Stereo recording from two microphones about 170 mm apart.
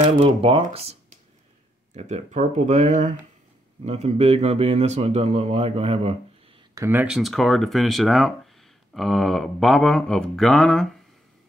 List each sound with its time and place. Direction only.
0.0 s speech: 35° right (ahead or behind)
2.0 s speech: 40° right (ahead or behind)
6.7 s a sound: 15° right (ahead or behind); by 10.9 s 5° left (ahead or behind)